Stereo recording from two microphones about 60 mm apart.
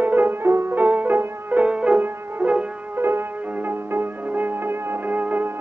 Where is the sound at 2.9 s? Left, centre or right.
Right.